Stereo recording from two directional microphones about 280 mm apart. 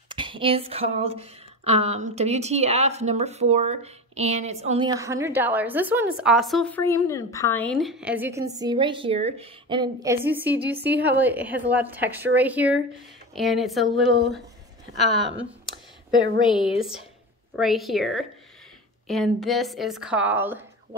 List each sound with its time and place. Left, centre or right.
0.1 s a sound: centre
8.5 s a woman's voice: centre
17.6 s speech: centre